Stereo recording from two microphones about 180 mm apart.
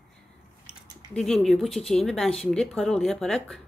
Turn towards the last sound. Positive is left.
turn(degrees=5)  # may be behind; listen again after turning